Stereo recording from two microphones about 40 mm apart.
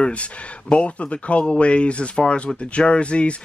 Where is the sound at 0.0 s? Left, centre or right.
Left.